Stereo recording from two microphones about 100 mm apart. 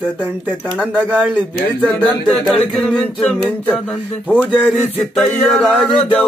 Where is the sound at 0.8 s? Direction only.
15° right (ahead or behind).